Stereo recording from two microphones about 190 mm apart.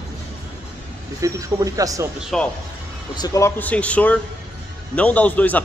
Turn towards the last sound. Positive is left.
turn(degrees=10)  # may be behind; listen again after turning